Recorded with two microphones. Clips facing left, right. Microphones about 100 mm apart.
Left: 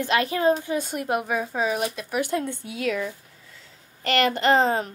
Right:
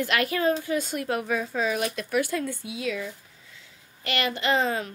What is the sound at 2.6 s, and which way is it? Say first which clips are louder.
A woman's voice: left 4 dB; 50° left (ahead or behind).